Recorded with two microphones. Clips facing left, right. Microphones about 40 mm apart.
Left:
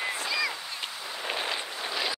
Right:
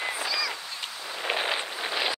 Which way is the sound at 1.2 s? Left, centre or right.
Centre.